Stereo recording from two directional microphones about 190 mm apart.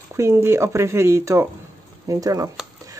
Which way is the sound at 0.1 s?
15° right (ahead or behind).